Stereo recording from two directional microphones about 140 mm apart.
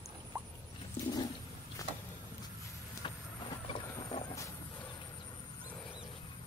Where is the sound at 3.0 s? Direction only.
40° left (ahead or behind).